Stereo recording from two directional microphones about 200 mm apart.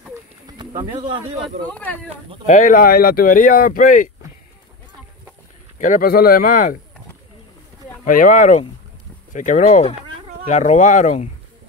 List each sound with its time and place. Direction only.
0.9 s speech: 25° right (ahead or behind)
1.7 s speech: 10° left (ahead or behind)
2.4 s speech: 40° left (ahead or behind)
5.8 s speech: 40° left (ahead or behind)
8.0 s speech: 40° left (ahead or behind)